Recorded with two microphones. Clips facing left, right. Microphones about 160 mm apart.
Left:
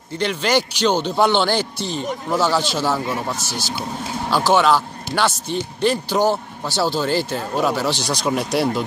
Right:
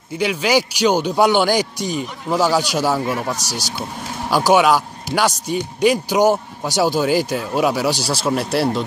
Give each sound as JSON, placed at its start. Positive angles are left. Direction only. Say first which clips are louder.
{"t": 0.2, "sound": "a man's voice", "louder": "right 2 dB", "side_deg": -10}
{"t": 3.3, "sound": "speech", "louder": "even", "side_deg": -40}
{"t": 4.3, "sound": "a man's voice", "louder": "right 2 dB", "side_deg": -10}